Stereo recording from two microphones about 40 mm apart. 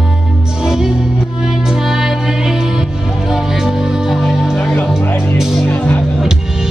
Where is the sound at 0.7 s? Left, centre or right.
Centre.